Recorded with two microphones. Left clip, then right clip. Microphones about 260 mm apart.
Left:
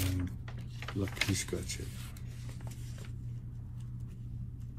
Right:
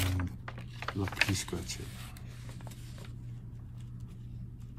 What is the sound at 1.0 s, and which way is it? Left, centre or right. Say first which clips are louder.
Speech: right 3 dB; right.